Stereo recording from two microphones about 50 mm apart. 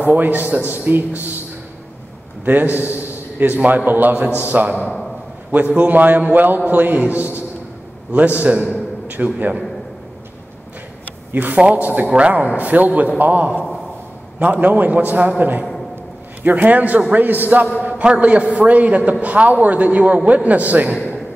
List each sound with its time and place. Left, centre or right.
0.0 s a man's voice: right
2.4 s a man's voice: right
8.4 s a man's voice: right
11.5 s a man's voice: right